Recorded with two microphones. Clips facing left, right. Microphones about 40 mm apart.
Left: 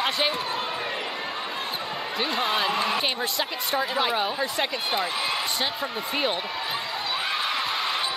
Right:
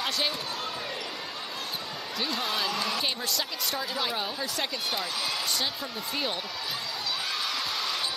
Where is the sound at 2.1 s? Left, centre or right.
Left.